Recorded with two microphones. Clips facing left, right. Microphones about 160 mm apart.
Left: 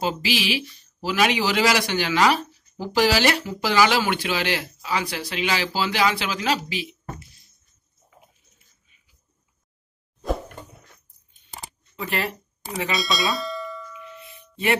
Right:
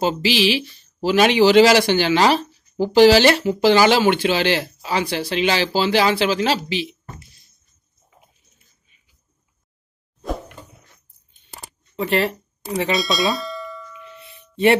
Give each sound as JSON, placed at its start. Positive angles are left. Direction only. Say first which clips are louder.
{"t": 0.0, "sound": "speech", "louder": "right 6 dB", "side_deg": -30}
{"t": 12.0, "sound": "speech", "louder": "right 8 dB", "side_deg": -35}
{"t": 12.9, "sound": "bell", "louder": "right 3 dB", "side_deg": 0}